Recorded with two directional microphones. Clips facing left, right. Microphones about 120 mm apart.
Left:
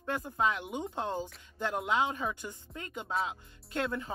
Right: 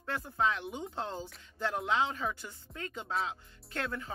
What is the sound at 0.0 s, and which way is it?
Speech, 15° left (ahead or behind).